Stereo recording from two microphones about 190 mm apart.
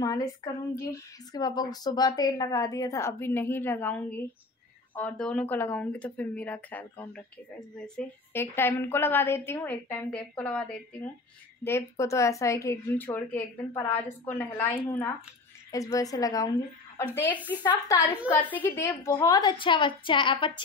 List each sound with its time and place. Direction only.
0.0 s a woman's voice: 20° left (ahead or behind)